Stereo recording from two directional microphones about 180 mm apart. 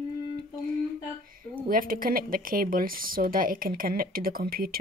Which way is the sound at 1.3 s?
50° right (ahead or behind).